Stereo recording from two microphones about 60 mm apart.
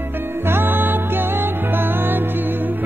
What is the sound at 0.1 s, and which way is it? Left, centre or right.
Music, right.